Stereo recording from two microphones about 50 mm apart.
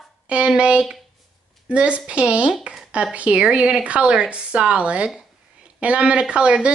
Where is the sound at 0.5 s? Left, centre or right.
Centre.